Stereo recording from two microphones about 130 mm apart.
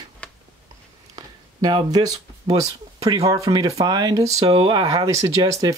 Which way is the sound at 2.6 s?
25° right (ahead or behind).